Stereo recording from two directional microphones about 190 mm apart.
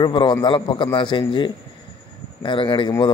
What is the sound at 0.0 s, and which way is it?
A man's voice, 25° left (ahead or behind).